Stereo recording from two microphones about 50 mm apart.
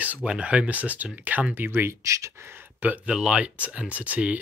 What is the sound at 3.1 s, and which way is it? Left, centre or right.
Speech, centre.